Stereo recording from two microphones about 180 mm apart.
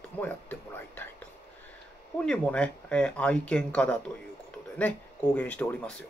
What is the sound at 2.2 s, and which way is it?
Speech, 5° left (ahead or behind).